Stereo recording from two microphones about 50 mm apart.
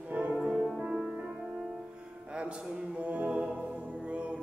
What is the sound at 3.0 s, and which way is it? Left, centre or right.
Music, right.